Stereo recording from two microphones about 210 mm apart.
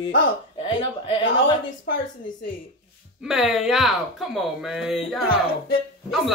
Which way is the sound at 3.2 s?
Centre (ahead or behind).